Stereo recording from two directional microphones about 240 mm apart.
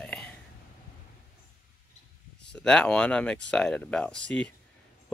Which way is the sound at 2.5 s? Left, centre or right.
Centre.